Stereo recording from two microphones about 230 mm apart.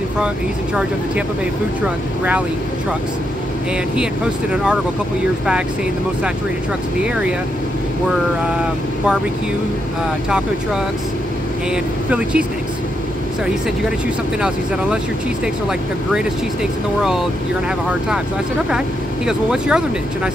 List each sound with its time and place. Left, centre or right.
3.7 s speech: centre
11.7 s speech: centre
19.2 s speech: centre